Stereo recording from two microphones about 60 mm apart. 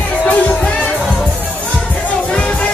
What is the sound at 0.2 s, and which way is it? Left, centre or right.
Music, left.